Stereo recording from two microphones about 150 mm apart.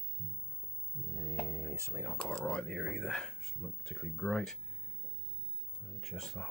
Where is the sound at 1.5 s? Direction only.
20° right (ahead or behind).